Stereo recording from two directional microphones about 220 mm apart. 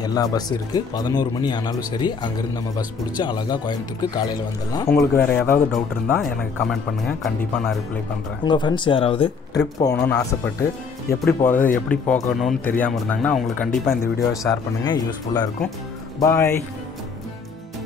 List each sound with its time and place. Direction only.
0.0 s speech: 15° left (ahead or behind)
3.2 s speech: 20° left (ahead or behind); by 7.7 s centre (ahead or behind)
8.5 s speech: 20° left (ahead or behind)
9.9 s a man's voice: 5° left (ahead or behind)